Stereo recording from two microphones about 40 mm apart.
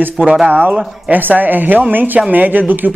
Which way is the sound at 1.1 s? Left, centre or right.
Right.